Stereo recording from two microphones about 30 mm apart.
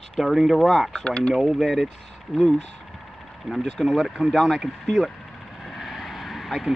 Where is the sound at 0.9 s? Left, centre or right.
Left.